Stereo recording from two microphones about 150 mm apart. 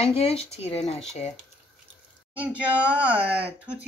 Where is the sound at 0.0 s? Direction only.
40° left (ahead or behind).